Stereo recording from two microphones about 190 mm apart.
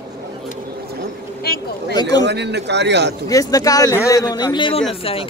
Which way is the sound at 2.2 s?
65° right (ahead or behind).